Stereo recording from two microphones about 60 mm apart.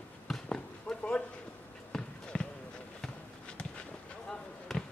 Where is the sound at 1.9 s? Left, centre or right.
Centre.